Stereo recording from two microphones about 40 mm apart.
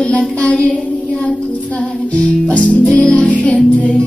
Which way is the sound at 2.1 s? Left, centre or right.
Left.